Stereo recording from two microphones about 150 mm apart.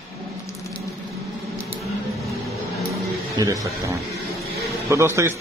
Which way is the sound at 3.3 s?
20° right (ahead or behind).